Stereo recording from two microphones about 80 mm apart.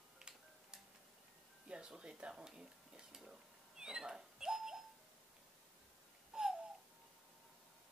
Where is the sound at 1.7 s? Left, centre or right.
Centre.